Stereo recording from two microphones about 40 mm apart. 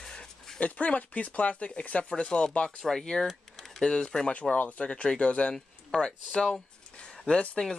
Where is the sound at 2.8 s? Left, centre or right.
Centre.